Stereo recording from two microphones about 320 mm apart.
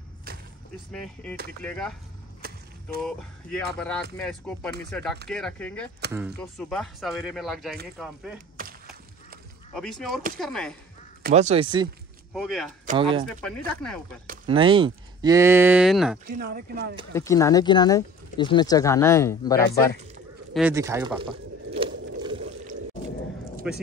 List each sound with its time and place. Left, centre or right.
0.9 s speech: centre
3.0 s speech: centre
9.8 s speech: centre
11.2 s speech: right
12.4 s speech: centre
12.8 s speech: centre
13.7 s speech: centre
14.2 s speech: right; by 16.2 s centre
16.3 s speech: right
17.1 s speech: centre
20.5 s speech: centre
22.2 s water: centre
23.6 s speech: centre